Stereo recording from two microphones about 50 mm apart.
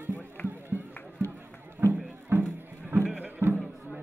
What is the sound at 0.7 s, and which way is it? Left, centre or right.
Run, right.